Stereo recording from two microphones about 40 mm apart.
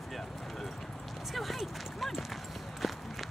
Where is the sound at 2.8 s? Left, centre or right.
Centre.